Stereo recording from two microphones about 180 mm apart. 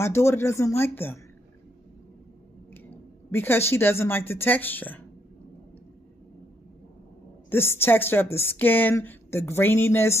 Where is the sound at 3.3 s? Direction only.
15° left (ahead or behind).